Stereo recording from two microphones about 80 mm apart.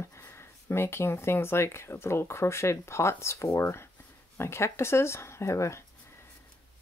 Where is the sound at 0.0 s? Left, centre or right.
Left.